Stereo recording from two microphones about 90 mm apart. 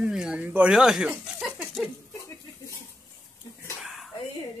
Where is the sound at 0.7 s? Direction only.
5° right (ahead or behind).